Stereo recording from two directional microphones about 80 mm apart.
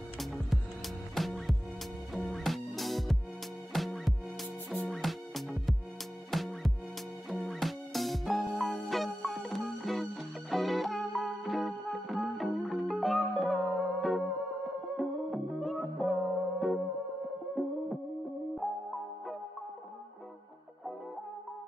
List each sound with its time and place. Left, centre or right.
0.2 s music: centre